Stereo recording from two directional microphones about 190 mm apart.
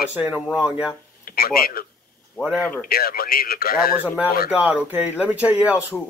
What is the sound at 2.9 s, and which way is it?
A man's voice, 50° left (ahead or behind).